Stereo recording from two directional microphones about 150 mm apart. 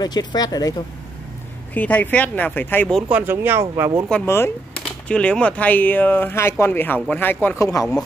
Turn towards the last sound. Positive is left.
turn(degrees=20)  # may be behind; listen again after turning